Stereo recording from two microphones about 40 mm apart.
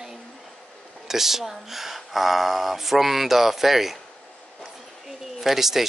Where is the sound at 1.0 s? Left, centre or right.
Centre.